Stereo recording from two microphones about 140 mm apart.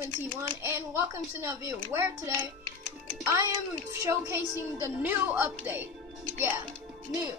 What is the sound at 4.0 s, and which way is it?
Speech, 20° right (ahead or behind).